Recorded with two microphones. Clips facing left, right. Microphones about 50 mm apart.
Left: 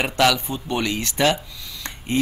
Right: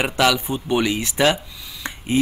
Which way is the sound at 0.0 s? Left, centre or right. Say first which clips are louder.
Even; centre.